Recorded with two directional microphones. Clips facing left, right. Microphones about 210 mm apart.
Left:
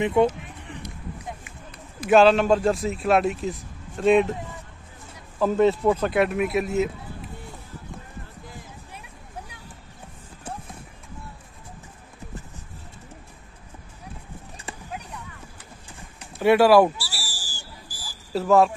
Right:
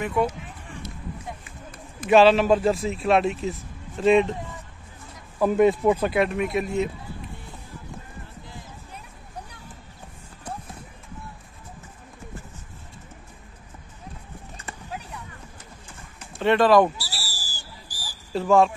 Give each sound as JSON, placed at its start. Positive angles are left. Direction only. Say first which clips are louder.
{"t": 0.0, "sound": "speech", "louder": "left 5 dB", "side_deg": 25}
{"t": 2.0, "sound": "a man's voice", "louder": "even", "side_deg": 0}
{"t": 5.4, "sound": "speech", "louder": "right 1 dB", "side_deg": -10}
{"t": 6.1, "sound": "a man's voice", "louder": "left 1 dB", "side_deg": 5}
{"t": 16.3, "sound": "speech", "louder": "left 2 dB", "side_deg": 10}
{"t": 16.9, "sound": "a sound", "louder": "left 1 dB", "side_deg": -40}
{"t": 18.3, "sound": "a man's voice", "louder": "even", "side_deg": 0}